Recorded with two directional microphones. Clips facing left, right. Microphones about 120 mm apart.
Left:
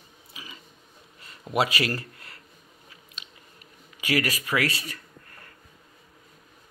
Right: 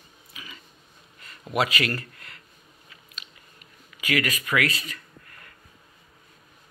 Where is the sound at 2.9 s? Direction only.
30° left (ahead or behind).